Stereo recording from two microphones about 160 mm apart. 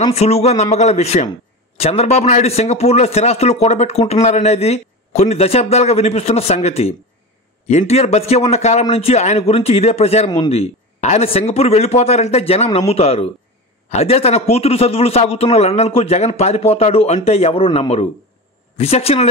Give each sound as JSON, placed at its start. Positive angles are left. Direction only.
{"t": 0.1, "sound": "a man's voice", "side_deg": 40}